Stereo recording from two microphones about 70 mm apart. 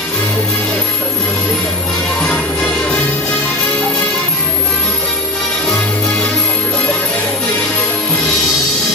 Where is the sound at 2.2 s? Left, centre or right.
Centre.